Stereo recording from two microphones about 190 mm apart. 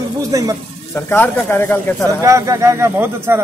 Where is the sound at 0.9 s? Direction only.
10° left (ahead or behind).